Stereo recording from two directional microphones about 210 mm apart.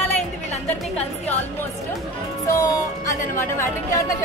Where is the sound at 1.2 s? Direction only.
10° left (ahead or behind).